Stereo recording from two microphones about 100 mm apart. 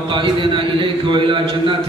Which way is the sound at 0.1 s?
55° right (ahead or behind).